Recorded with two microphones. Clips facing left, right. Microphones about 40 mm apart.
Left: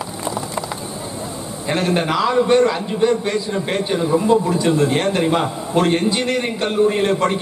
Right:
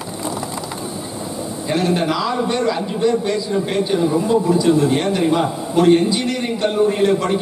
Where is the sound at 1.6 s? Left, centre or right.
Left.